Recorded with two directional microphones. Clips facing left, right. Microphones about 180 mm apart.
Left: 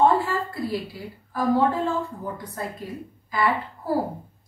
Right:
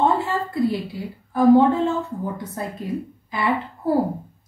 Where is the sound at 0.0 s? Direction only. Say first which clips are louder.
Even; 25° right (ahead or behind).